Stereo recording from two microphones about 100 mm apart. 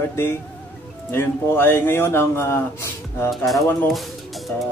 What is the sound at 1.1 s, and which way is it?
A man's voice, 20° left (ahead or behind).